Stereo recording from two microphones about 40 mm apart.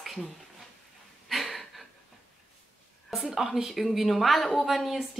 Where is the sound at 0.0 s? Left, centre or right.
Centre.